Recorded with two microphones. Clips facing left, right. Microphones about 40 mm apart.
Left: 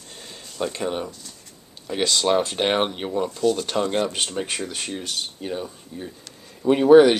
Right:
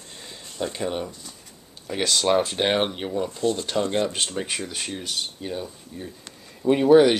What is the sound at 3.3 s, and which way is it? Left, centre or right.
Speech, right.